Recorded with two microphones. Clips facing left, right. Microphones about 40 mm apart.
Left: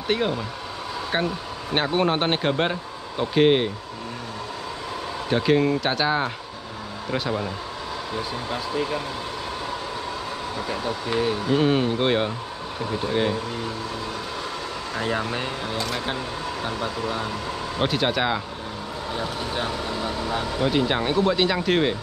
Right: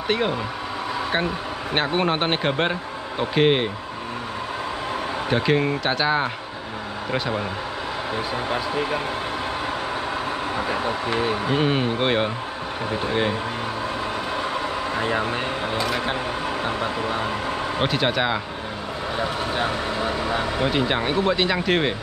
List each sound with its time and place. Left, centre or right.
0.1 s speech: centre
5.3 s speech: centre
8.5 s speech: right
10.6 s speech: right
15.0 s speech: right
15.8 s speech: centre
16.4 s speech: right
17.8 s speech: centre
19.1 s speech: right